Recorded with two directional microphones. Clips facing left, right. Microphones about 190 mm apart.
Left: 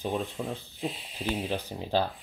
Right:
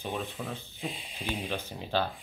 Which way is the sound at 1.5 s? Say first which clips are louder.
Left 3 dB; 35° left (ahead or behind).